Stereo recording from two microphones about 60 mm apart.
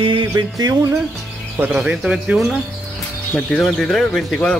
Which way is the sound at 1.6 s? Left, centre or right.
Right.